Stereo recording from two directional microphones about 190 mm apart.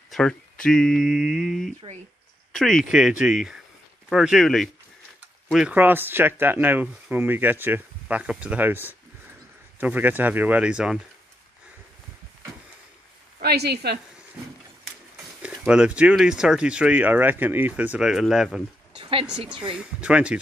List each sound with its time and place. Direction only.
0.1 s speech: 5° left (ahead or behind)
13.4 s a woman's voice: 55° right (ahead or behind)
15.4 s speech: 5° right (ahead or behind)
18.9 s speech: 25° right (ahead or behind)
19.8 s speech: 5° right (ahead or behind)